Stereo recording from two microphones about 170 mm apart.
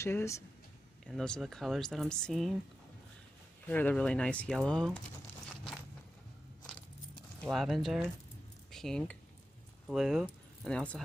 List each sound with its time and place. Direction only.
0.0 s speech: 15° left (ahead or behind)
1.0 s speech: 5° left (ahead or behind)
3.6 s speech: 10° left (ahead or behind)
7.5 s speech: centre (ahead or behind)